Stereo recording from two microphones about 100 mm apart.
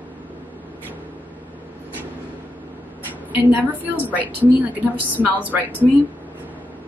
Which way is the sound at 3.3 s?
15° right (ahead or behind).